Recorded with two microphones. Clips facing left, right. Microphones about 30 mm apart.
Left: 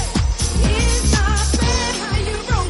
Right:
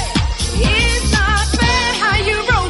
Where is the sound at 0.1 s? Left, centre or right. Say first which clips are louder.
Right 3 dB; right.